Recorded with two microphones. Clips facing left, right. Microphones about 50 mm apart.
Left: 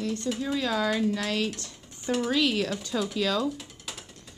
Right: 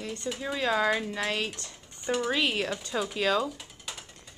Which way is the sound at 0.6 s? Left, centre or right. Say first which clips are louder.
Right 2 dB; right.